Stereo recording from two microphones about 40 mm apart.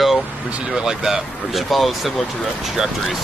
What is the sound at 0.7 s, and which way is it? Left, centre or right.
Speech, centre.